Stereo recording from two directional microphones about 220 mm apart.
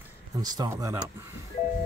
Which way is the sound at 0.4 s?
15° right (ahead or behind).